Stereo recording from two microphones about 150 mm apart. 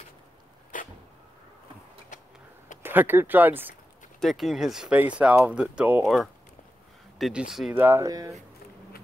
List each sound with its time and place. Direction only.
0.7 s a sound: 60° left (ahead or behind)
2.8 s speech: 15° right (ahead or behind)
4.2 s speech: centre (ahead or behind)
7.2 s speech: 5° right (ahead or behind)
7.8 s speech: 20° right (ahead or behind)